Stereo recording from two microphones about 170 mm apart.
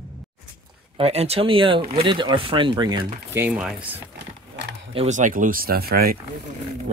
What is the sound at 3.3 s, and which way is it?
Speech, 10° right (ahead or behind).